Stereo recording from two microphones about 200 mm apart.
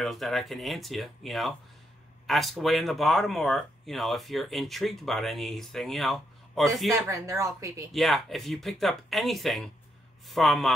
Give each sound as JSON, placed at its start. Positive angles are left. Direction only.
{"t": 0.0, "sound": "speech", "side_deg": 0}
{"t": 7.1, "sound": "speech", "side_deg": -15}
{"t": 7.9, "sound": "speech", "side_deg": 0}